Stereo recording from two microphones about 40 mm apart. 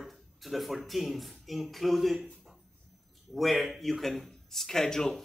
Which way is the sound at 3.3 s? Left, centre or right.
Centre.